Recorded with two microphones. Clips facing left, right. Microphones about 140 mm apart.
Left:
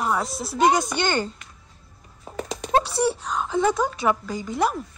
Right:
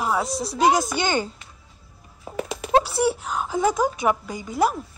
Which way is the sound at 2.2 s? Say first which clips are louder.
Right 2 dB; 5° right (ahead or behind).